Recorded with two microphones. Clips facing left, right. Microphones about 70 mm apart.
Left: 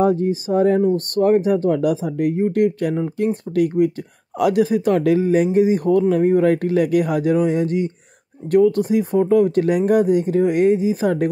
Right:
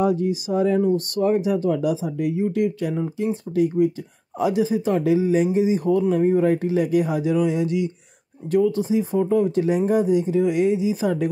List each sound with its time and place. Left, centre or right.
0.0 s speech: left
3.5 s speech: left
8.5 s speech: left